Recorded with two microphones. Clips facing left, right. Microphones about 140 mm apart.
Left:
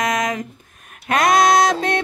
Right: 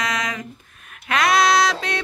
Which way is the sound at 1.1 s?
45° left (ahead or behind).